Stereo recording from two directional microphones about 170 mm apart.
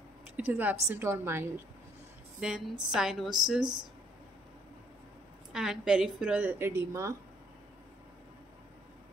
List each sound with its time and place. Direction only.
0.4 s a woman's voice: 10° right (ahead or behind)
2.4 s a woman's voice: 5° right (ahead or behind)
3.6 s speech: 25° right (ahead or behind)
5.5 s a woman's voice: 5° right (ahead or behind)